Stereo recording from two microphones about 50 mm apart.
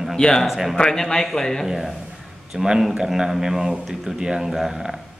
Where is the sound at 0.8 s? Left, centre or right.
Centre.